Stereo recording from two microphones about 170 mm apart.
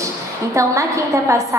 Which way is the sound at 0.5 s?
20° right (ahead or behind).